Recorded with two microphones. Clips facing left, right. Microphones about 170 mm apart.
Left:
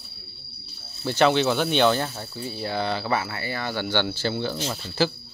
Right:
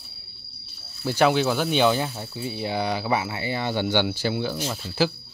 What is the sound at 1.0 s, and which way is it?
Speech, 5° right (ahead or behind).